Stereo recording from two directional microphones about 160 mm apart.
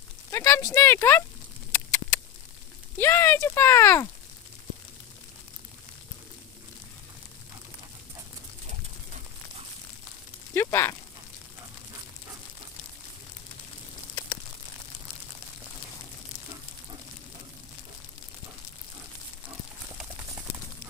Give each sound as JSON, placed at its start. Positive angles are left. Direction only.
{"t": 0.3, "sound": "speech", "side_deg": 15}
{"t": 1.7, "sound": "a sound", "side_deg": 15}
{"t": 3.0, "sound": "speech", "side_deg": 15}
{"t": 10.5, "sound": "speech", "side_deg": 15}